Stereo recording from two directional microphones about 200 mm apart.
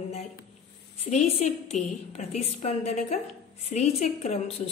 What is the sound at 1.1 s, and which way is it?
A woman's voice, 35° left (ahead or behind).